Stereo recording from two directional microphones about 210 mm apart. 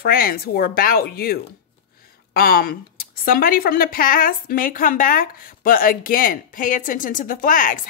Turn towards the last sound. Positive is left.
turn(degrees=40)  # may be behind; listen again after turning